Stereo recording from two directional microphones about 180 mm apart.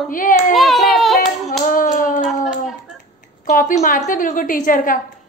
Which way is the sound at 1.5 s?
50° left (ahead or behind).